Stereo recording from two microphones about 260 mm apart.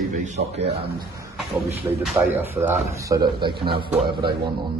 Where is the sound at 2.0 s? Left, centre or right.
Centre.